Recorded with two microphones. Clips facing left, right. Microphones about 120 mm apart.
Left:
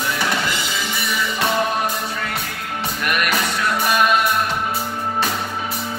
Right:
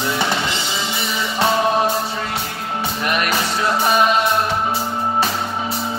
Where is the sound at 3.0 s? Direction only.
35° right (ahead or behind).